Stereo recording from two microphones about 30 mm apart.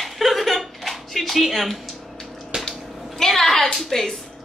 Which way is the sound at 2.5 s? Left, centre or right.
Right.